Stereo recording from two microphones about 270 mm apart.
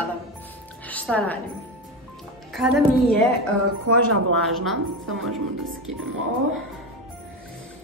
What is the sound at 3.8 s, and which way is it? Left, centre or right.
Speech, right.